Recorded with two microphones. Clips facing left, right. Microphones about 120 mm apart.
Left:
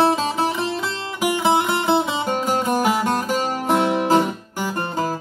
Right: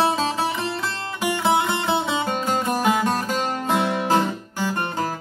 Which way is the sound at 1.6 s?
10° left (ahead or behind).